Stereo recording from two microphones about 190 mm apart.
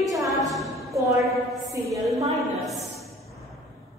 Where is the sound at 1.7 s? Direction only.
15° right (ahead or behind).